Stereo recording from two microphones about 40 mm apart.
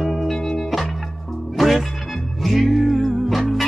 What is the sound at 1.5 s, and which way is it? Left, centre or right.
Music, centre.